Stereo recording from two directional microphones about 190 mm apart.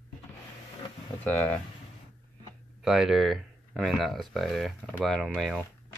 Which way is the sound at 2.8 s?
Centre (ahead or behind).